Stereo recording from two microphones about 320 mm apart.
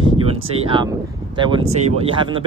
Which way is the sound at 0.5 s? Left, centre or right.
Centre.